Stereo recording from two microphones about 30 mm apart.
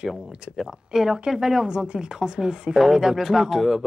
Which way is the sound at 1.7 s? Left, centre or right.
Right.